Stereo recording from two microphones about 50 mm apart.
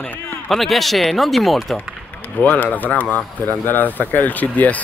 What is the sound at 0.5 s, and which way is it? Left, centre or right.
Speech, centre.